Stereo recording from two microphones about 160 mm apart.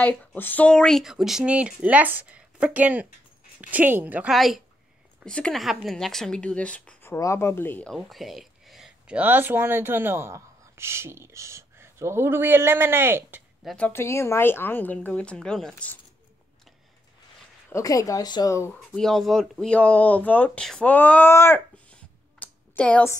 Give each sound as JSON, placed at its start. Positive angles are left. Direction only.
{"t": 0.0, "sound": "a woman's voice", "side_deg": 10}
{"t": 7.9, "sound": "speech", "side_deg": 0}
{"t": 13.7, "sound": "a woman's voice", "side_deg": 10}
{"t": 17.6, "sound": "speech", "side_deg": 20}
{"t": 18.7, "sound": "speech", "side_deg": 5}